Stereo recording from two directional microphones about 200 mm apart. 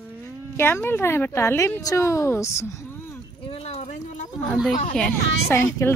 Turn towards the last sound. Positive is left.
turn(degrees=10)  # may be behind; listen again after turning